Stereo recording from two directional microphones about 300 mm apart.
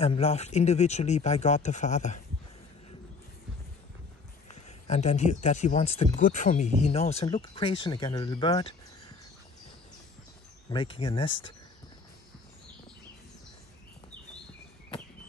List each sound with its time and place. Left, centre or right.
0.0 s speech: left
4.6 s speech: left
10.7 s speech: centre